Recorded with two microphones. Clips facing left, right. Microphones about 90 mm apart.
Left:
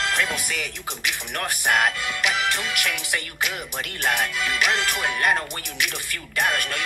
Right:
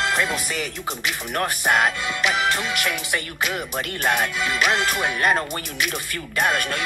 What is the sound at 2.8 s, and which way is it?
Music, 40° right (ahead or behind).